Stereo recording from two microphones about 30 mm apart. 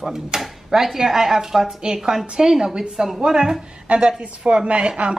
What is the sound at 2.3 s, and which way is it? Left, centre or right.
A woman's voice, right.